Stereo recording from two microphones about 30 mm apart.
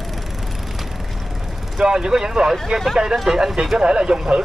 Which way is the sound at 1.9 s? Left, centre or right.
Right.